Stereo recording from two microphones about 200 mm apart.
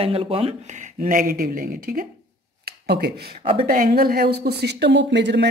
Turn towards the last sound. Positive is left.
turn(degrees=-60)  # may be behind; listen again after turning